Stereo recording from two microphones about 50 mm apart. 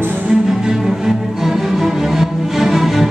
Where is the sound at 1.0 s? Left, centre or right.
Centre.